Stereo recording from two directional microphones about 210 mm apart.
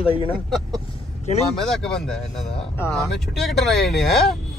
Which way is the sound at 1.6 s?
Centre (ahead or behind).